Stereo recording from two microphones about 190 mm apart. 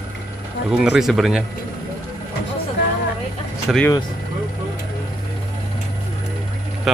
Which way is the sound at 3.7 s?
5° right (ahead or behind).